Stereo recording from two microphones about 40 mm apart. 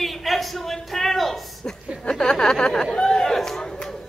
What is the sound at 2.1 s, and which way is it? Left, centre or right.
Chatter, centre.